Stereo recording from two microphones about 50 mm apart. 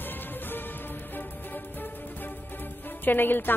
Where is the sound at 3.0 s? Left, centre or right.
Left.